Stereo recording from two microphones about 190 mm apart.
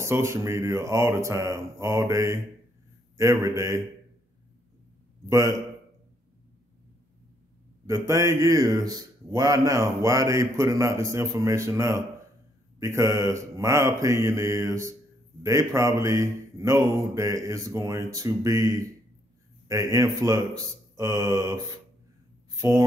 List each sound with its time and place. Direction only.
0.0 s speech: 15° right (ahead or behind)
5.3 s speech: 15° right (ahead or behind)
7.8 s speech: 15° right (ahead or behind)